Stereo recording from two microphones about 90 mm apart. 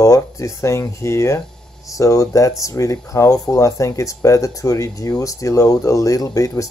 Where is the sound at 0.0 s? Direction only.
35° left (ahead or behind).